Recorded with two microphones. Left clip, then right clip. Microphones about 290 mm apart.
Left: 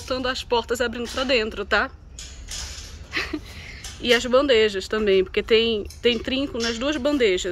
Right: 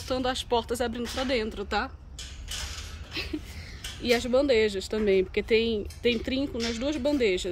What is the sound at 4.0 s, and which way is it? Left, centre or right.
Speech, centre.